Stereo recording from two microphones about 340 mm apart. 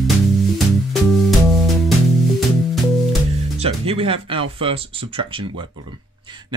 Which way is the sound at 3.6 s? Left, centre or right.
Centre.